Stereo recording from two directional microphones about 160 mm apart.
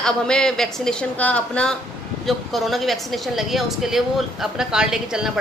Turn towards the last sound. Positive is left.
turn(degrees=-5)  # may be behind; listen again after turning